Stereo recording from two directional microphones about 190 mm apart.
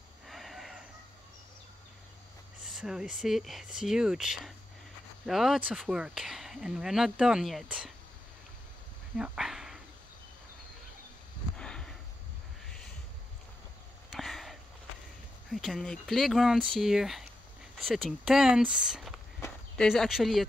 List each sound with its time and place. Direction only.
0.3 s a sound: centre (ahead or behind)
2.6 s speech: 5° right (ahead or behind)
9.1 s speech: 5° right (ahead or behind)
11.5 s a sound: 5° left (ahead or behind)
14.1 s sniff: centre (ahead or behind)
15.5 s speech: centre (ahead or behind)